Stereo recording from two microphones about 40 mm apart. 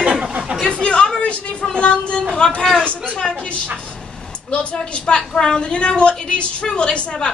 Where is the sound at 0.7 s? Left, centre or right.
Left.